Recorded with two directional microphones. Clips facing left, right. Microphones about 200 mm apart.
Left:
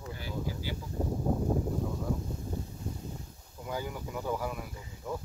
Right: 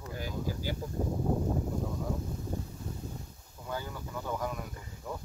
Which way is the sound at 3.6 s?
15° left (ahead or behind).